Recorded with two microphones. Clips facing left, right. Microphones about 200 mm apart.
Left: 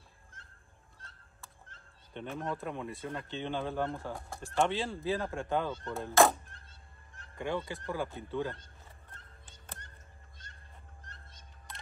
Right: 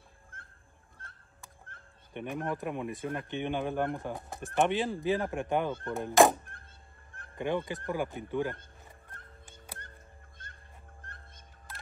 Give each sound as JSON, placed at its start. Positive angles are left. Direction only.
{"t": 0.3, "sound": "fowl", "side_deg": -55}
{"t": 1.0, "sound": "a sound", "side_deg": -55}
{"t": 2.1, "sound": "speech", "side_deg": -15}
{"t": 7.3, "sound": "speech", "side_deg": -20}
{"t": 10.4, "sound": "a sound", "side_deg": -55}
{"t": 11.0, "sound": "bird", "side_deg": -55}
{"t": 11.7, "sound": "coin", "side_deg": -5}